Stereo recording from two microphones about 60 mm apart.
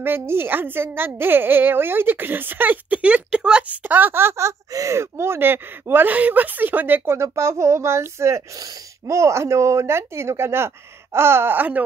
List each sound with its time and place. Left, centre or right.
0.0 s a woman's voice: right
7.1 s a woman's voice: right